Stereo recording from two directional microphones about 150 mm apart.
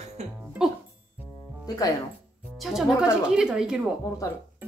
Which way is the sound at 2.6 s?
Centre (ahead or behind).